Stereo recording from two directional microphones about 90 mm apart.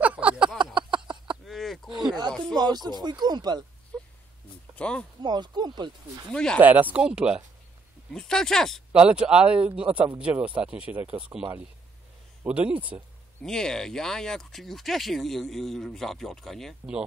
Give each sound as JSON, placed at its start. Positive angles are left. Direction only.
{"t": 0.0, "sound": "a sound", "side_deg": -15}
{"t": 0.9, "sound": "a sound", "side_deg": -60}
{"t": 1.4, "sound": "a sound", "side_deg": 0}
{"t": 2.5, "sound": "speech", "side_deg": -50}
{"t": 4.7, "sound": "speech", "side_deg": 10}
{"t": 5.2, "sound": "speech", "side_deg": -55}
{"t": 6.3, "sound": "speech", "side_deg": 10}
{"t": 6.6, "sound": "a man's voice", "side_deg": -20}
{"t": 8.1, "sound": "speech", "side_deg": 5}
{"t": 8.9, "sound": "a man's voice", "side_deg": -10}
{"t": 12.4, "sound": "a man's voice", "side_deg": -15}
{"t": 13.4, "sound": "speech", "side_deg": 5}